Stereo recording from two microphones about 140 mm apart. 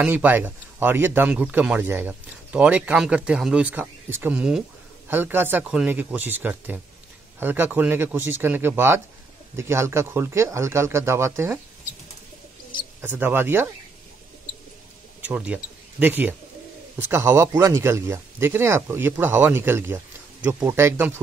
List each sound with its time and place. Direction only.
0.0 s speech: 15° right (ahead or behind)
13.0 s speech: 15° right (ahead or behind)
15.2 s speech: 10° right (ahead or behind)